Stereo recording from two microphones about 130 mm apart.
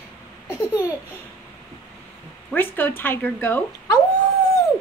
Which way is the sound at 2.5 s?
15° left (ahead or behind).